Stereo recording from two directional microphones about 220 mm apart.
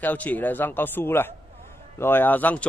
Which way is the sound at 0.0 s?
5° left (ahead or behind).